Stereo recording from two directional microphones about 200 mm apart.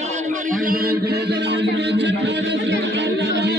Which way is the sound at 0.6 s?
45° right (ahead or behind).